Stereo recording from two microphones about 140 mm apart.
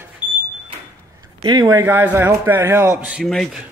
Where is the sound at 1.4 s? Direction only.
30° right (ahead or behind).